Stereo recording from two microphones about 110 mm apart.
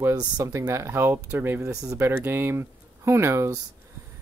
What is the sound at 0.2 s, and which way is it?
Speech, 25° right (ahead or behind).